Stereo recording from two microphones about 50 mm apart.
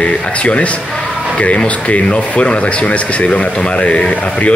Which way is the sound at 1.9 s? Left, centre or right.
Left.